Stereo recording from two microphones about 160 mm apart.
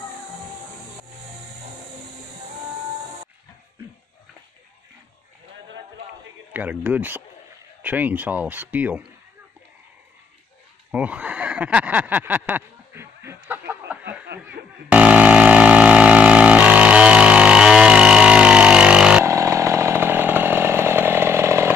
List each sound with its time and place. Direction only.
6.5 s speech: 10° right (ahead or behind)
10.9 s a sound: 10° right (ahead or behind)
14.2 s snicker: 90° right
14.9 s vehicle: 10° right (ahead or behind)
19.2 s chainsaw: 20° right (ahead or behind)